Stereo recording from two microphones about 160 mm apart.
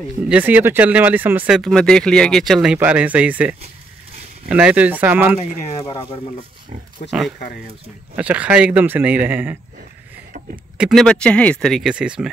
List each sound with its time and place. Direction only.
0.3 s speech: 10° right (ahead or behind)
1.6 s speech: centre (ahead or behind)
7.1 s speech: 5° right (ahead or behind)
7.3 s speech: 60° left (ahead or behind)
8.2 s speech: 10° right (ahead or behind)
10.8 s speech: centre (ahead or behind)